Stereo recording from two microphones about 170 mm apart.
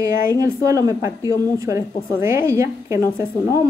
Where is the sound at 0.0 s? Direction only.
20° right (ahead or behind).